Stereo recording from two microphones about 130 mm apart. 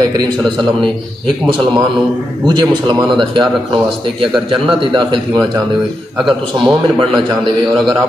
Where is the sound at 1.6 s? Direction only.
30° right (ahead or behind).